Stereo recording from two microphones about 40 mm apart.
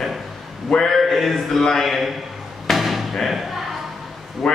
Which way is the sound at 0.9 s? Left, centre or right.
Centre.